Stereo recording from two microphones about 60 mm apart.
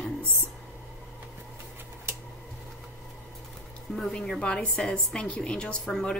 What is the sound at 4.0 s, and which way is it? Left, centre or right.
A woman's voice, centre.